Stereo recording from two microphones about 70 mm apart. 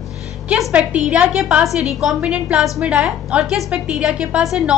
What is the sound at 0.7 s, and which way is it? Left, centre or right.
Speech, centre.